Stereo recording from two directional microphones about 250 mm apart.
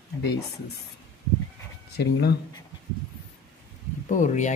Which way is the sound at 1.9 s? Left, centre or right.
Left.